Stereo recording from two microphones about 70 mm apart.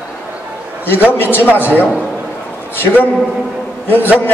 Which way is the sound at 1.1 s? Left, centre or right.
Left.